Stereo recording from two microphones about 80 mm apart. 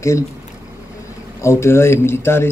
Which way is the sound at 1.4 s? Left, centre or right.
Left.